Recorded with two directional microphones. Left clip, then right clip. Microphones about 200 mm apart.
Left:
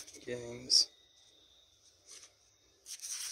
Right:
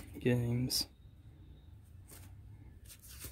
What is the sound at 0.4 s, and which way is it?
Speech, 25° right (ahead or behind).